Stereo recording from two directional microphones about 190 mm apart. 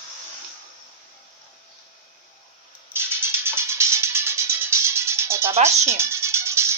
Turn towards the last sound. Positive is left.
turn(degrees=-15)  # may be behind; listen again after turning